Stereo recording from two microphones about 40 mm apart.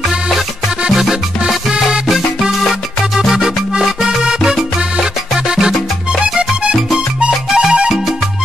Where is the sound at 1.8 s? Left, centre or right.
Centre.